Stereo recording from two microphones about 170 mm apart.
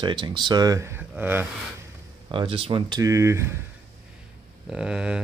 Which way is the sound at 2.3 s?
30° right (ahead or behind).